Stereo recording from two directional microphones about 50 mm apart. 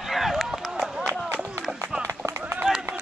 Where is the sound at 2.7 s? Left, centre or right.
Centre.